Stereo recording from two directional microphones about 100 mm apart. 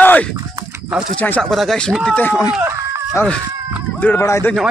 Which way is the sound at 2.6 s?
30° right (ahead or behind).